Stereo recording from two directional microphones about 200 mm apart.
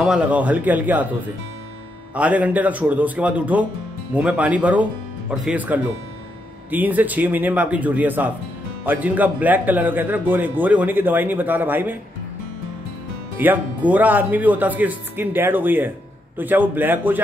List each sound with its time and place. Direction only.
0.0 s speech: 5° right (ahead or behind)
2.1 s speech: 5° right (ahead or behind)
13.4 s speech: 10° right (ahead or behind)